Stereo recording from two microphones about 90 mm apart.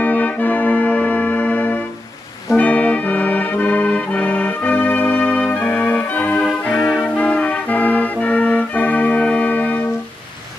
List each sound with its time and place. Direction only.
0.0 s music: 20° left (ahead or behind)